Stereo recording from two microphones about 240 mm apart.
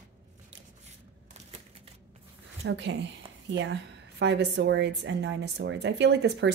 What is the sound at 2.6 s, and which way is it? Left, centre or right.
A woman's voice, right.